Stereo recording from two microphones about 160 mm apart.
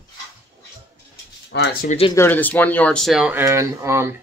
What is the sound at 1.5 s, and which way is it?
Speech, 90° left.